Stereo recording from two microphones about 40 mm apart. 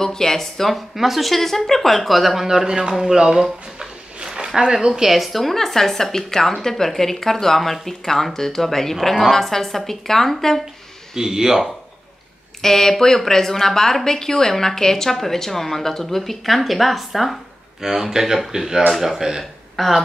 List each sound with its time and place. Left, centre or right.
0.0 s a woman's voice: centre
2.4 s speech: centre
4.2 s a sound: right
4.6 s a woman's voice: centre
11.1 s speech: centre
12.6 s a woman's voice: centre
19.8 s a woman's voice: centre